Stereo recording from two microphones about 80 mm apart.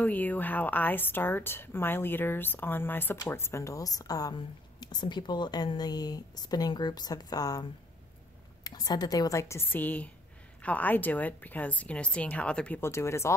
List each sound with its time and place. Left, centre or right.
0.0 s a woman's voice: left
8.6 s a woman's voice: left
9.3 s a woman's voice: left; by 12.8 s centre
12.8 s speech: left